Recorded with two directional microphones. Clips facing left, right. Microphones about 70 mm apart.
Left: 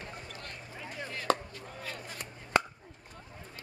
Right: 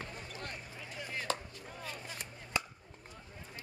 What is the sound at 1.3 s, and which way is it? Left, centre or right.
Chopping, left.